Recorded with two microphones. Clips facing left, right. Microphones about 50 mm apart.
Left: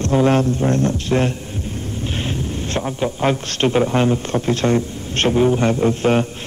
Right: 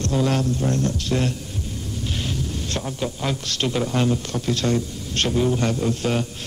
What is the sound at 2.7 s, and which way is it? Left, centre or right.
A man's voice, left.